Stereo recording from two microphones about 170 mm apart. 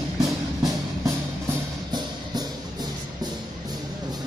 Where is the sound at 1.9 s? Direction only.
25° right (ahead or behind).